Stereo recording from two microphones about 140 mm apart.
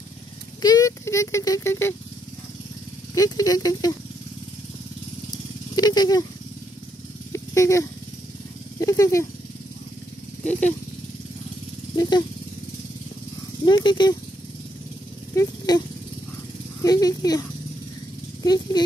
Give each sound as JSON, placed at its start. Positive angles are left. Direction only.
{"t": 0.6, "sound": "speech", "side_deg": 25}
{"t": 3.2, "sound": "speech", "side_deg": 25}
{"t": 5.8, "sound": "speech", "side_deg": 30}
{"t": 7.3, "sound": "a sound", "side_deg": 20}
{"t": 8.7, "sound": "speech", "side_deg": 25}
{"t": 10.4, "sound": "speech", "side_deg": 10}
{"t": 13.7, "sound": "speech", "side_deg": 35}
{"t": 15.3, "sound": "speech", "side_deg": 25}
{"t": 16.8, "sound": "speech", "side_deg": 25}